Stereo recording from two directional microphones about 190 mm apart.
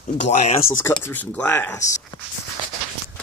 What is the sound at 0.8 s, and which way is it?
Speech, 10° left (ahead or behind).